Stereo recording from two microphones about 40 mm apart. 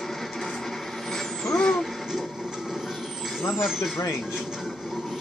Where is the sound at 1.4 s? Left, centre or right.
Centre.